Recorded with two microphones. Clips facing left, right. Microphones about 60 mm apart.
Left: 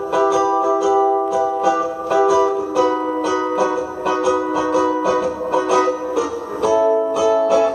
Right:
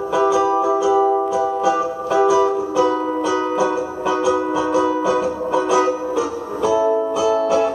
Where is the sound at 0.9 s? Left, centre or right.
Centre.